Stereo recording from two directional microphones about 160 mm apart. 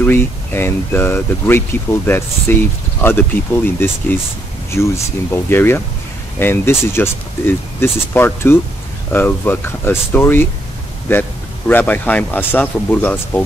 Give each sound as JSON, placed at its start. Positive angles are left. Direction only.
{"t": 0.0, "sound": "speech", "side_deg": 10}